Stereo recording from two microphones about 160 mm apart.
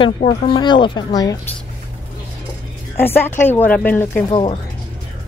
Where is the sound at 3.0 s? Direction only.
15° left (ahead or behind).